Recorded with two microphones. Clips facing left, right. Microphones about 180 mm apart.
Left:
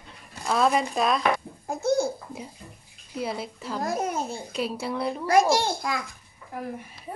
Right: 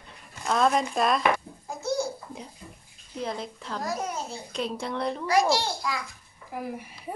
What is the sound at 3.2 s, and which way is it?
Speech, 5° left (ahead or behind).